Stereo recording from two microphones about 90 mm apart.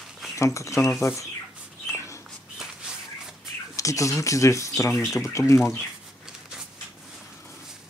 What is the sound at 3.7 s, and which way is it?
Speech, 35° left (ahead or behind).